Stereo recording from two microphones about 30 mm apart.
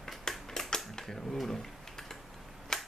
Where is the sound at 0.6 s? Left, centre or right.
Left.